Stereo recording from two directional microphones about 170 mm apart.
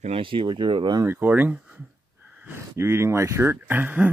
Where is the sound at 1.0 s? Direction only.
15° right (ahead or behind).